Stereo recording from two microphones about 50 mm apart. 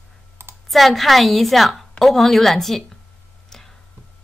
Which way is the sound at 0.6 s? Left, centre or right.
Centre.